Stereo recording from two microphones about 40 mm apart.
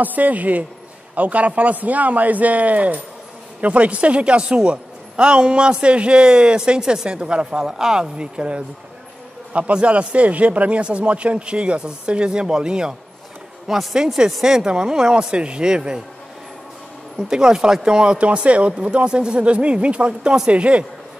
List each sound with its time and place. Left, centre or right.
0.0 s a man's voice: right; by 12.9 s centre
13.7 s a woman's voice: centre
17.3 s a woman's voice: centre